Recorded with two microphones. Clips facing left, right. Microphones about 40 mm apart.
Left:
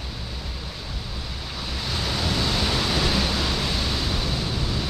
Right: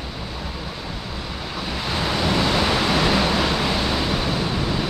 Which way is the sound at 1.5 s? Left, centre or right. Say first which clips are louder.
Right 4 dB; right.